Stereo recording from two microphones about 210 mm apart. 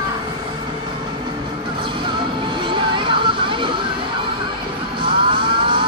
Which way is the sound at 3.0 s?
25° right (ahead or behind).